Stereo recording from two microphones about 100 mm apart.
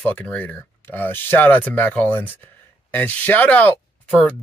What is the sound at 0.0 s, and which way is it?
Speech, 15° left (ahead or behind).